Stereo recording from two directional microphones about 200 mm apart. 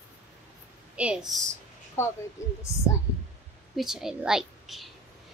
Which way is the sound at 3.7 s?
Centre (ahead or behind).